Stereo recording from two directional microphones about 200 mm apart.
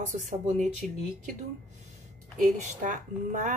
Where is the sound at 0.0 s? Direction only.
40° right (ahead or behind).